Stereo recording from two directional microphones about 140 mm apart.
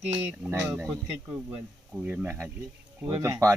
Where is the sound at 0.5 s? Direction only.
15° right (ahead or behind).